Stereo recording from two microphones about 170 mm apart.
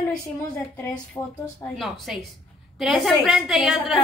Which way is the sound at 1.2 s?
25° left (ahead or behind).